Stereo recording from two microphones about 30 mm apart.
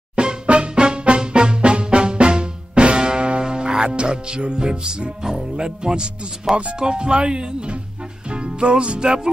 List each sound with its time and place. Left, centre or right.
0.1 s music: right
3.9 s speech: right
6.5 s speech: centre
6.8 s speech: right
9.0 s speech: right